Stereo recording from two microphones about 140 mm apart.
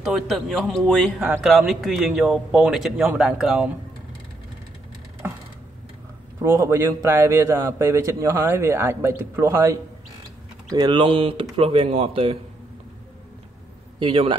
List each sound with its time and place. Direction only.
0.1 s a man's voice: centre (ahead or behind)
5.2 s a sound: 10° right (ahead or behind)
6.4 s a man's voice: 20° right (ahead or behind)
10.7 s speech: 30° right (ahead or behind)
13.9 s speech: 40° right (ahead or behind)